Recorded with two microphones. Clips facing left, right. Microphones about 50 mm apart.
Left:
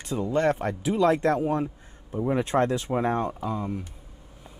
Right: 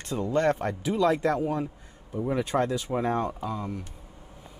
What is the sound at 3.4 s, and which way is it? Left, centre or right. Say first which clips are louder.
Speech: left 3 dB; centre.